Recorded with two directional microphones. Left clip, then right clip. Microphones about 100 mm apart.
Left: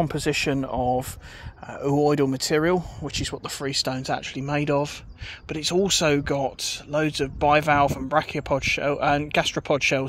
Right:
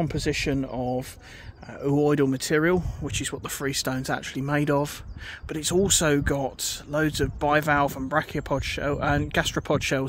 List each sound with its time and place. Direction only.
0.1 s speech: 20° right (ahead or behind)
1.8 s speech: 35° right (ahead or behind); by 4.9 s 60° right (ahead or behind)
5.5 s speech: 45° right (ahead or behind)
9.4 s speech: 50° right (ahead or behind)